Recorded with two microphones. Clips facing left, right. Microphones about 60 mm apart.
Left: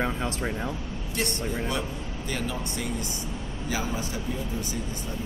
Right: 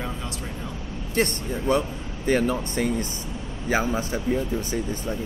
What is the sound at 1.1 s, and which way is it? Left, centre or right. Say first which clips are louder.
Speech: right 5 dB; right.